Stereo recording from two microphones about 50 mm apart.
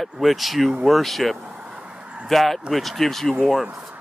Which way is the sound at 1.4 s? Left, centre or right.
Right.